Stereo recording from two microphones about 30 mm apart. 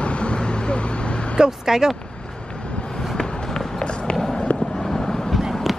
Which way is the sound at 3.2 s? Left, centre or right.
Left.